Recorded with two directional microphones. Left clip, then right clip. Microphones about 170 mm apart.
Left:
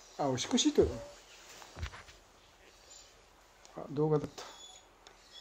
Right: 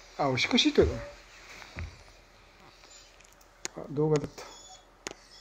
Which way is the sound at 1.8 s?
30° left (ahead or behind).